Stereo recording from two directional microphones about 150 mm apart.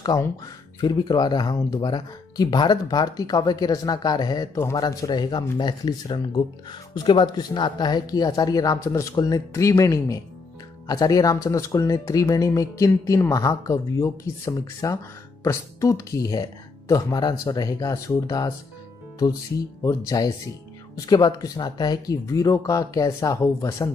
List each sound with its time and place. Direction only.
0.0 s a man's voice: 25° left (ahead or behind)
19.8 s speech: 25° left (ahead or behind)